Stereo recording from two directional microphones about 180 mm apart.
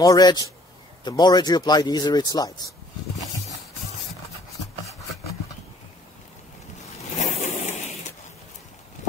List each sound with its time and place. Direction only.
0.0 s speech: 20° left (ahead or behind)
7.2 s pigeon: 40° left (ahead or behind)